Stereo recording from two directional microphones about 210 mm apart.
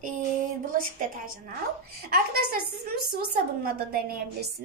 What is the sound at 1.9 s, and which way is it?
A woman's voice, 45° right (ahead or behind).